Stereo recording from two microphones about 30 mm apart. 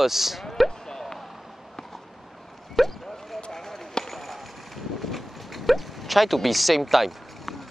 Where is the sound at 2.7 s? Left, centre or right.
Centre.